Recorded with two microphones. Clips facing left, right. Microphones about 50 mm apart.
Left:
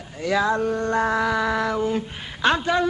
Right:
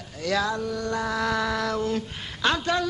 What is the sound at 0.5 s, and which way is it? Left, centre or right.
Speech, left.